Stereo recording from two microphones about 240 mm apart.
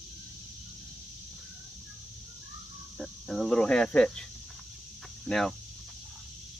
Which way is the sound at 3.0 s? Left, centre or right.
Centre.